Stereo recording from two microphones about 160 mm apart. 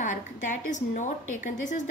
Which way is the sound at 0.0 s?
50° left (ahead or behind).